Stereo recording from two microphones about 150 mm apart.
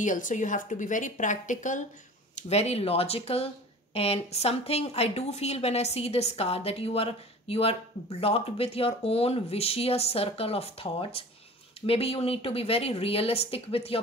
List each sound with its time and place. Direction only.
0.0 s a woman's voice: 60° left (ahead or behind)
2.5 s a woman's voice: 45° left (ahead or behind)